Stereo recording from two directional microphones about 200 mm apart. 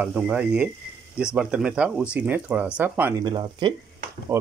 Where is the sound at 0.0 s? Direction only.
10° right (ahead or behind).